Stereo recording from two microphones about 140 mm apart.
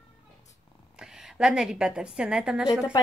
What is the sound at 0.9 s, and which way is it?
A woman's voice, 5° right (ahead or behind).